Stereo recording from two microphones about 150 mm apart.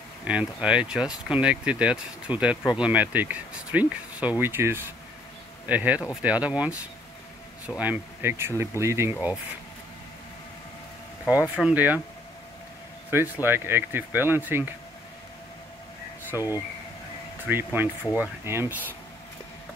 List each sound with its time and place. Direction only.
0.3 s speech: 5° right (ahead or behind)
11.2 s speech: 10° right (ahead or behind)
13.1 s speech: 15° right (ahead or behind)
16.3 s speech: 15° right (ahead or behind)